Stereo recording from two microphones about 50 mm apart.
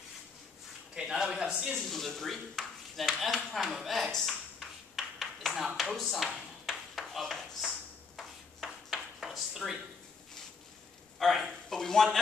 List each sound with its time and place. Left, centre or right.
0.9 s a man's voice: centre
1.7 s speech: centre
8.2 s a sound: centre
11.1 s speech: centre